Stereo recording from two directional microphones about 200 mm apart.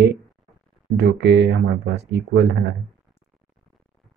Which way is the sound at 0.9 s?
55° right (ahead or behind).